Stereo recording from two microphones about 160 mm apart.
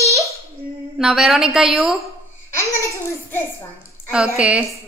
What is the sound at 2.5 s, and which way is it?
Laughter, 20° left (ahead or behind).